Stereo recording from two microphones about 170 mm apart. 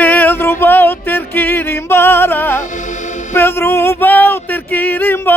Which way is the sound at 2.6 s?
45° left (ahead or behind).